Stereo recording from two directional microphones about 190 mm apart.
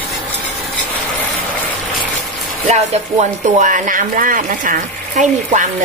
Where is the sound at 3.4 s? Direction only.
40° right (ahead or behind).